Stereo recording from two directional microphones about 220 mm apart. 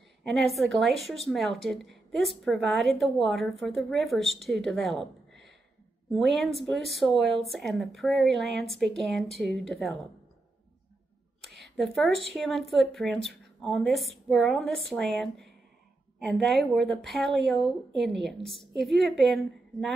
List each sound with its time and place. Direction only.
0.2 s a woman's voice: centre (ahead or behind)
11.6 s a woman's voice: centre (ahead or behind)